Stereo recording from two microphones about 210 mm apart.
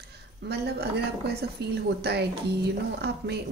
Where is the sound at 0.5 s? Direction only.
50° right (ahead or behind).